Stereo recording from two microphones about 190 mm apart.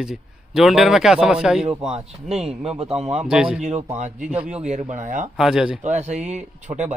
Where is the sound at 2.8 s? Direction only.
35° right (ahead or behind).